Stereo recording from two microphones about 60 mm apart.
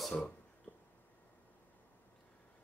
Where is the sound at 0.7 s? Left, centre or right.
Left.